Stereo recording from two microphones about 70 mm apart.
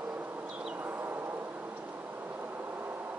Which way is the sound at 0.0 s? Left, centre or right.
Right.